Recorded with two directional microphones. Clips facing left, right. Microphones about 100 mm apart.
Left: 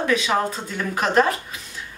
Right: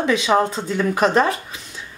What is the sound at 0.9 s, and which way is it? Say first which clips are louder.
Speech: right 1 dB; 35° right (ahead or behind).